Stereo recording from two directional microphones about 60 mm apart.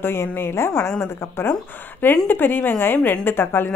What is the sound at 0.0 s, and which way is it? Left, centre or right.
A woman's voice, left.